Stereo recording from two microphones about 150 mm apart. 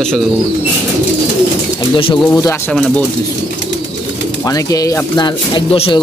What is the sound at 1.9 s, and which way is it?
Speech, 35° left (ahead or behind).